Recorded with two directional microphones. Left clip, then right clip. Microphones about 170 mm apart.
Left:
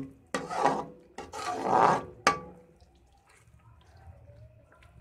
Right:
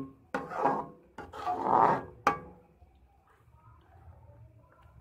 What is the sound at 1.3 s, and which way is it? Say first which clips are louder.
Roar: even; 20° left (ahead or behind).